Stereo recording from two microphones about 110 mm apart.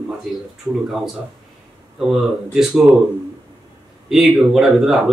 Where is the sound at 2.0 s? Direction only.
5° right (ahead or behind).